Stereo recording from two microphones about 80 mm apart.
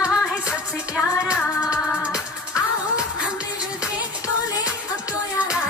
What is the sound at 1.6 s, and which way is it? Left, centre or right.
Music, centre.